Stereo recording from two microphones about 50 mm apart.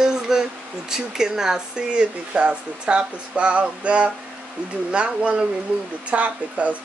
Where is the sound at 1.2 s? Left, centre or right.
Centre.